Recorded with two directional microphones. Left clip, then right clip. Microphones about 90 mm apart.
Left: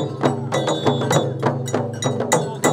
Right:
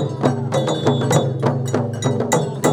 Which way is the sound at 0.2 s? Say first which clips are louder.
Right 1 dB; 15° left (ahead or behind).